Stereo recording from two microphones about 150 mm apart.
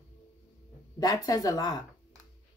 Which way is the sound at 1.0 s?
25° left (ahead or behind).